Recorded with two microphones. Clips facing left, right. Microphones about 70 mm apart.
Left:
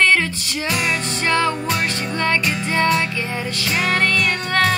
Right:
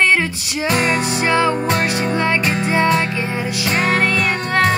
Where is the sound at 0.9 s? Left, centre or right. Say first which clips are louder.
Right 3 dB; centre.